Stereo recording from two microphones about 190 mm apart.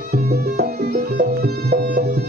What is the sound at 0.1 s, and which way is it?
Music, 55° right (ahead or behind).